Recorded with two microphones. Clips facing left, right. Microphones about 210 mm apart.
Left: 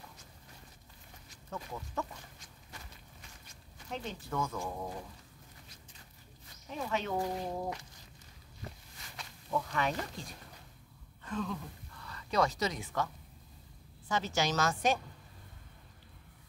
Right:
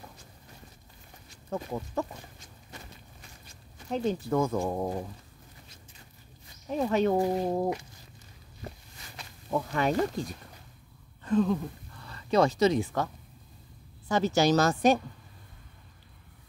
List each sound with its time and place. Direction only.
1.3 s speech: 35° right (ahead or behind)
2.3 s walk: 25° right (ahead or behind)
4.6 s speech: 50° right (ahead or behind)
6.7 s a woman's voice: 40° right (ahead or behind)
7.2 s speech: 50° right (ahead or behind)
9.5 s a woman's voice: 30° right (ahead or behind)